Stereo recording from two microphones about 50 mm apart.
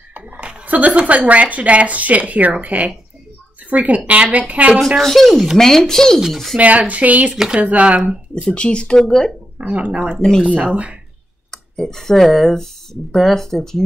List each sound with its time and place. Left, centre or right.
0.1 s speech: right
5.0 s speech: centre
6.6 s speech: right
7.3 s speech: centre
7.6 s speech: right
8.5 s speech: centre
9.6 s speech: right
10.2 s speech: centre
10.5 s speech: right
11.5 s speech: centre